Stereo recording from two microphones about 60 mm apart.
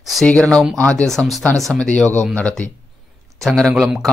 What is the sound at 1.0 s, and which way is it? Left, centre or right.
Speech, centre.